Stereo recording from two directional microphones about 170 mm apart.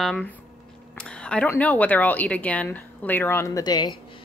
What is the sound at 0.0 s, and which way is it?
A woman's voice, 5° left (ahead or behind).